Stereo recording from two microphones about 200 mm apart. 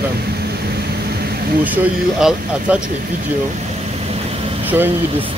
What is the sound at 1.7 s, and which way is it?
A man's voice, 5° right (ahead or behind).